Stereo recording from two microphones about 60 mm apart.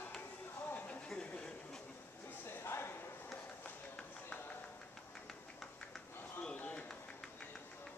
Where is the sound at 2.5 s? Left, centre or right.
Left.